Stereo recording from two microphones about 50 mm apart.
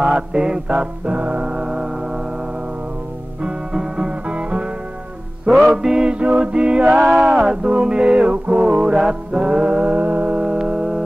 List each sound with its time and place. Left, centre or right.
0.1 s music: centre
3.4 s music: centre
5.5 s music: centre; by 7.3 s right
7.3 s music: centre
10.4 s music: centre